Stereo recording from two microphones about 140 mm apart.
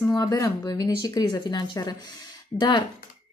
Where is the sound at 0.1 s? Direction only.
25° left (ahead or behind).